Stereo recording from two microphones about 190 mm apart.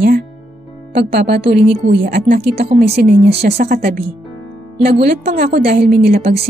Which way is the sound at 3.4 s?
40° right (ahead or behind).